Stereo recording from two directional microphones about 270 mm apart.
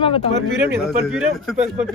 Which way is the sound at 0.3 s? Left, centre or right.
Right.